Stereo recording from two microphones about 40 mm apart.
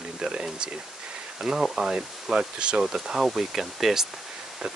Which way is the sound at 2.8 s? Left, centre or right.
Centre.